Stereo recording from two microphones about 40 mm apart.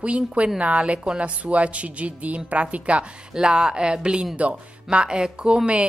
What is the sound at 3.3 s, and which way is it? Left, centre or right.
Speech, centre.